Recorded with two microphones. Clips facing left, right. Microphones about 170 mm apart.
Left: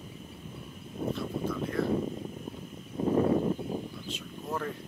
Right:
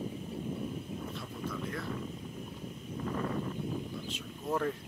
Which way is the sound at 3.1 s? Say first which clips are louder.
Left 10 dB; 30° left (ahead or behind).